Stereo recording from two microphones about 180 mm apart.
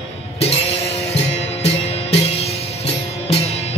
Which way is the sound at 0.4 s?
35° left (ahead or behind).